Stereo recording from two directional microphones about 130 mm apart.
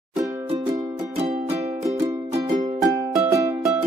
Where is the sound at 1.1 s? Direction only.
55° right (ahead or behind).